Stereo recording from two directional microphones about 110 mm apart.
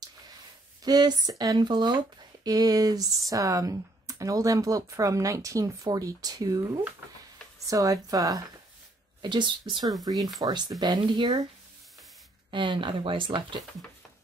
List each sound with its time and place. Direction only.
0.8 s speech: 35° right (ahead or behind)
9.2 s speech: 45° right (ahead or behind)
10.4 s speech: 35° right (ahead or behind)
12.4 s speech: 45° right (ahead or behind)